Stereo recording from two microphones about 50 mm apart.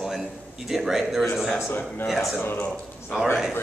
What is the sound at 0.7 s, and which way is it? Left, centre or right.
Speech, centre.